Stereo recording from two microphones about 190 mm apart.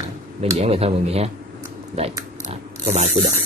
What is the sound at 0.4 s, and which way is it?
Speech, 30° right (ahead or behind).